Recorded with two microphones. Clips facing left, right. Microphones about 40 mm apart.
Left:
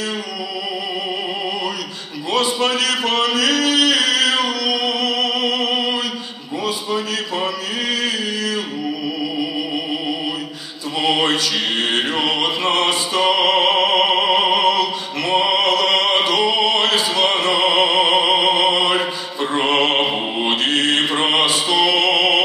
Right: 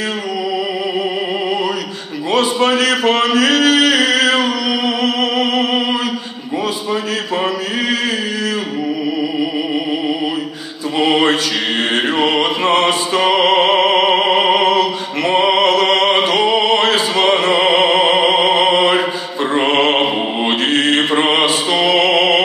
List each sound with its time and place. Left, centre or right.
2.3 s a man's voice: right
3.3 s music: right
11.0 s mantra: right
12.2 s music: right
12.6 s music: centre
13.7 s opera: right
15.9 s music: right
16.3 s opera: right
18.2 s music: right
18.8 s mantra: centre
21.2 s music: right
22.1 s music: centre